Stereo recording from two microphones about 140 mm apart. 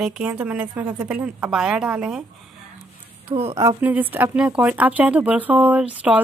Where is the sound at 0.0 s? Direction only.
10° right (ahead or behind).